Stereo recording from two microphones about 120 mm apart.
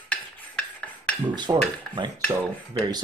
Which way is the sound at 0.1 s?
10° left (ahead or behind).